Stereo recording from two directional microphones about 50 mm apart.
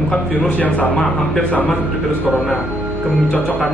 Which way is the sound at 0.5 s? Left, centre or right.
Left.